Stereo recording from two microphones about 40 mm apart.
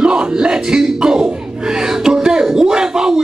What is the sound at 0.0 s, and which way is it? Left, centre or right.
Music, right.